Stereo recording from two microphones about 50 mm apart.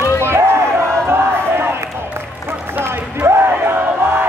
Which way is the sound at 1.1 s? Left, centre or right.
Right.